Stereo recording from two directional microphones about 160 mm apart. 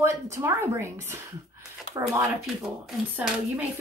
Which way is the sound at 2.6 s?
5° right (ahead or behind).